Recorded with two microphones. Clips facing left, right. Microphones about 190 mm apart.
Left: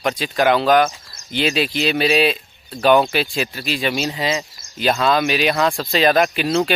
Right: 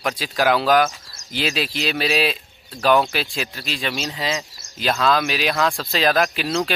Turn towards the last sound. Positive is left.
turn(degrees=0)  # may be behind; listen again after turning